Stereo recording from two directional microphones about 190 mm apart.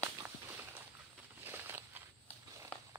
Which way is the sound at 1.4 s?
10° right (ahead or behind).